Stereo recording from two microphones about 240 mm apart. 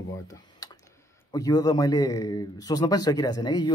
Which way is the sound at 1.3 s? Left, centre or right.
Centre.